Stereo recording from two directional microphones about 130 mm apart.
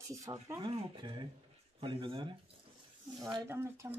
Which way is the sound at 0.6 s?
35° right (ahead or behind).